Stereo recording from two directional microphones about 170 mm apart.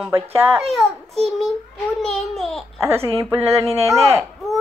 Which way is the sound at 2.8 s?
15° right (ahead or behind).